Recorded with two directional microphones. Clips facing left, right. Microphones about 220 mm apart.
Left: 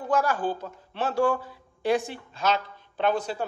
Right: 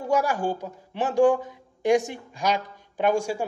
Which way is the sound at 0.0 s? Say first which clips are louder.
Right 1 dB; 10° right (ahead or behind).